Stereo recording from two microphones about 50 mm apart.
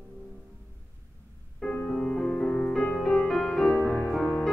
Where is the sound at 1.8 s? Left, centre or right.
Centre.